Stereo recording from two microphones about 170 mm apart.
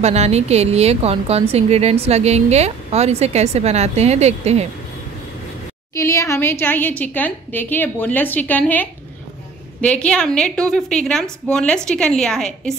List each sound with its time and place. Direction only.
0.0 s speech: 40° right (ahead or behind)
5.9 s a woman's voice: 20° left (ahead or behind)